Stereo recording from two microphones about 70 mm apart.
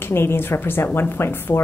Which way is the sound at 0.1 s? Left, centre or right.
Left.